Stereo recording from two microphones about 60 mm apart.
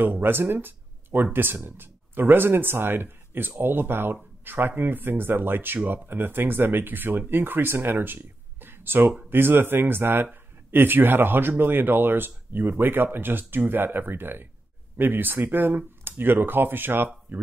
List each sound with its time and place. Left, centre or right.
0.0 s speech: right